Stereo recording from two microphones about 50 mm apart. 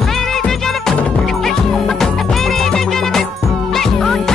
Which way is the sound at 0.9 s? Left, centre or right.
Left.